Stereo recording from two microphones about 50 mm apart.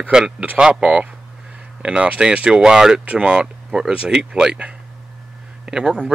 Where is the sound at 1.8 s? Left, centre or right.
Right.